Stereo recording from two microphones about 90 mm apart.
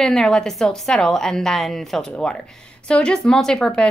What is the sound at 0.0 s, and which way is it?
Speech, 5° left (ahead or behind).